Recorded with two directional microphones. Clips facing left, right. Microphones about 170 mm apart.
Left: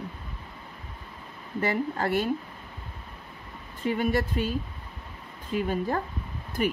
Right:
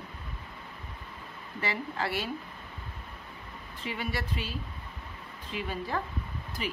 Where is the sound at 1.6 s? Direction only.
50° left (ahead or behind).